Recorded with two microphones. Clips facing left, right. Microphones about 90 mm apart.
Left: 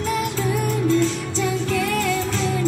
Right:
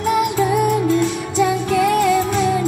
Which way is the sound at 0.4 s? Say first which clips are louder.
Right 6 dB; 15° right (ahead or behind).